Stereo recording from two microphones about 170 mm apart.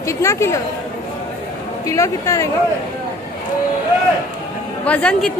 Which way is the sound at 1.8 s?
20° left (ahead or behind).